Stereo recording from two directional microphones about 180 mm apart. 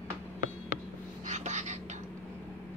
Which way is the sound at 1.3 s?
40° right (ahead or behind).